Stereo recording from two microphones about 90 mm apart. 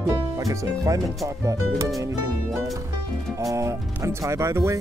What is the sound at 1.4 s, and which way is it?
Speech, 35° right (ahead or behind).